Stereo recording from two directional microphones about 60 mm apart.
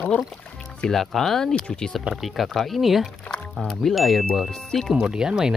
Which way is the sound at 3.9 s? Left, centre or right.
Centre.